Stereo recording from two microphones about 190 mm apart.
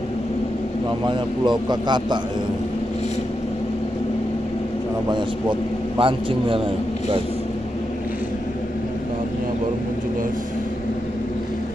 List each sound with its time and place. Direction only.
1.0 s a man's voice: 25° right (ahead or behind)
5.1 s a man's voice: 25° right (ahead or behind)